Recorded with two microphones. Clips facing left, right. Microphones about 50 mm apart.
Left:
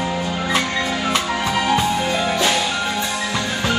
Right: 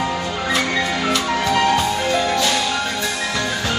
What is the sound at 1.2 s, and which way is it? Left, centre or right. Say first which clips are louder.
Music: right 2 dB; centre.